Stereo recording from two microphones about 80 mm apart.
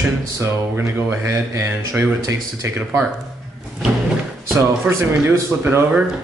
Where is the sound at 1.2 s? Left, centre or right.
Right.